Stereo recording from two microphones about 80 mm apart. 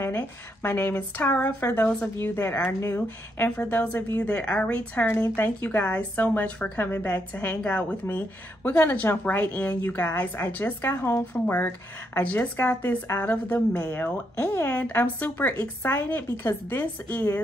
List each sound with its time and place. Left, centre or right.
0.0 s speech: left
3.4 s speech: left
7.3 s speech: centre
8.6 s speech: left